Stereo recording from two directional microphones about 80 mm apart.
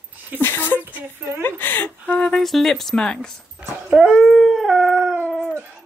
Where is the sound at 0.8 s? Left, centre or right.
Right.